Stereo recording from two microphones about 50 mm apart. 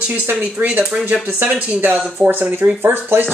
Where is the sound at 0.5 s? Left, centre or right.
Right.